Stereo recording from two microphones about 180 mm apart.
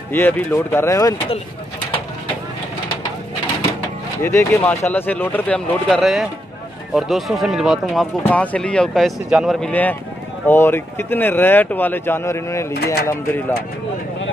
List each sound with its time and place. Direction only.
0.1 s speech: 10° left (ahead or behind)
4.2 s speech: 15° left (ahead or behind)
12.7 s speech: 65° left (ahead or behind)